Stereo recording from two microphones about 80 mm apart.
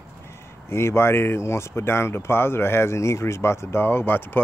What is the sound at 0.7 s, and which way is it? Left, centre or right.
Speech, left.